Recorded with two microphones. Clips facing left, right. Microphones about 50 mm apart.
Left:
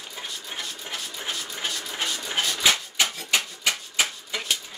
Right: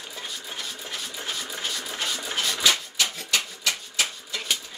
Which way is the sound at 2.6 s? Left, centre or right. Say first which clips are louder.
Left 1 dB; left.